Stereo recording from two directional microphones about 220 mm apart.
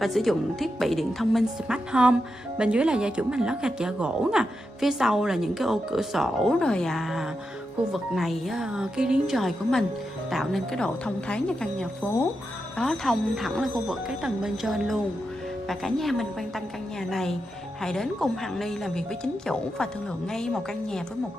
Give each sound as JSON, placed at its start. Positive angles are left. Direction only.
{"t": 0.0, "sound": "a woman's voice", "side_deg": 0}